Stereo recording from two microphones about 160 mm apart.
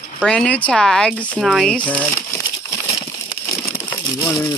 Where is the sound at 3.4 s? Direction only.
15° left (ahead or behind).